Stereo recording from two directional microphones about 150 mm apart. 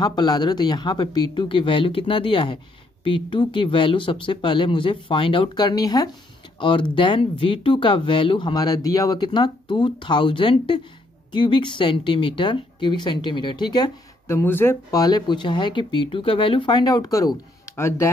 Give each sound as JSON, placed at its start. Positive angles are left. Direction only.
{"t": 0.0, "sound": "speech", "side_deg": 30}
{"t": 14.3, "sound": "speech", "side_deg": 15}